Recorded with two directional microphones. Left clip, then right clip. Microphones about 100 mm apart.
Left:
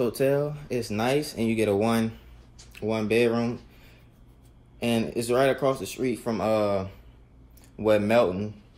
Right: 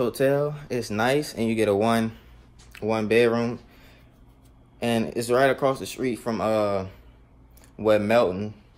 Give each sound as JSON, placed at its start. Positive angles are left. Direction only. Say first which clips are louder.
{"t": 0.0, "sound": "speech", "louder": "right 2 dB", "side_deg": -30}
{"t": 4.7, "sound": "speech", "louder": "right 2 dB", "side_deg": -25}
{"t": 6.2, "sound": "speech", "louder": "right 1 dB", "side_deg": -10}